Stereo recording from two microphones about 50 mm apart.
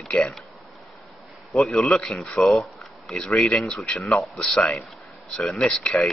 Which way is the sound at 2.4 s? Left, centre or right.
Centre.